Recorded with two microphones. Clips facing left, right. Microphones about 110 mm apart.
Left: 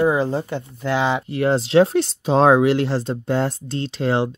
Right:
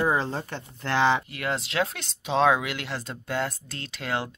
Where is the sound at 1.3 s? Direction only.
30° left (ahead or behind).